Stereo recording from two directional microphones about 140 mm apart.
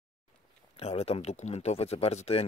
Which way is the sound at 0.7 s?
45° left (ahead or behind).